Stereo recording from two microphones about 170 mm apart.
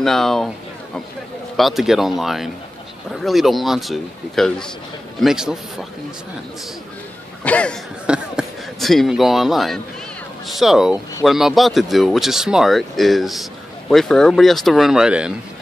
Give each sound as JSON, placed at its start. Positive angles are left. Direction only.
{"t": 0.0, "sound": "speech", "side_deg": 0}
{"t": 1.6, "sound": "speech", "side_deg": 0}
{"t": 7.4, "sound": "speech", "side_deg": 5}